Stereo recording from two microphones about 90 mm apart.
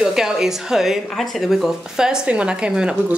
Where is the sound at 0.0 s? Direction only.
5° right (ahead or behind).